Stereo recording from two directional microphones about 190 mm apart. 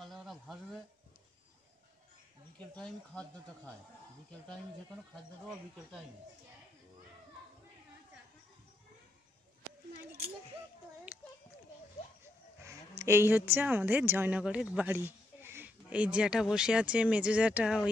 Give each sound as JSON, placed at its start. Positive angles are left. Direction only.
{"t": 0.0, "sound": "a sound", "side_deg": 0}
{"t": 2.7, "sound": "speech", "side_deg": 5}
{"t": 5.5, "sound": "speech", "side_deg": -5}
{"t": 12.6, "sound": "a woman's voice", "side_deg": -15}